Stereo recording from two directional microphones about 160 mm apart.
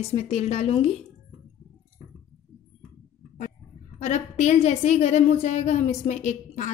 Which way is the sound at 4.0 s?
45° left (ahead or behind).